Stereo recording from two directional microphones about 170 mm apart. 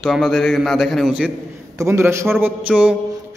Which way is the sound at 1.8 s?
15° right (ahead or behind).